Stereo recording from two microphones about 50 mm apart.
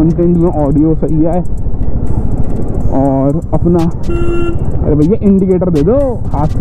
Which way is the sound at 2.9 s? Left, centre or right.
Centre.